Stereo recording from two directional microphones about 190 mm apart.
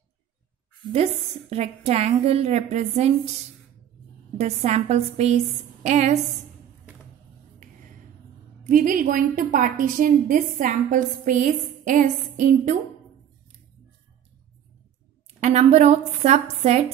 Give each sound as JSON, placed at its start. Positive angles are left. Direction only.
{"t": 1.5, "sound": "a woman's voice", "side_deg": -35}
{"t": 4.4, "sound": "a woman's voice", "side_deg": -35}
{"t": 8.6, "sound": "a woman's voice", "side_deg": -45}
{"t": 15.4, "sound": "a woman's voice", "side_deg": -35}